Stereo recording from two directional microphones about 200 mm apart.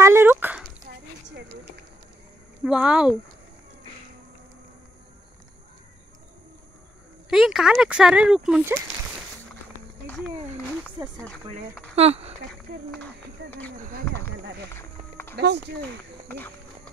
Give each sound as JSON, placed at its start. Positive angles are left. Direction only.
{"t": 0.0, "sound": "dog", "side_deg": -10}
{"t": 1.2, "sound": "music", "side_deg": -60}
{"t": 2.6, "sound": "speech", "side_deg": -5}
{"t": 7.2, "sound": "speech", "side_deg": 0}
{"t": 10.0, "sound": "a sound", "side_deg": 0}
{"t": 11.9, "sound": "speech", "side_deg": -30}
{"t": 13.0, "sound": "speech", "side_deg": 5}
{"t": 13.7, "sound": "speech", "side_deg": -40}
{"t": 14.8, "sound": "music", "side_deg": 10}
{"t": 15.3, "sound": "speech", "side_deg": -55}
{"t": 16.3, "sound": "speech", "side_deg": 10}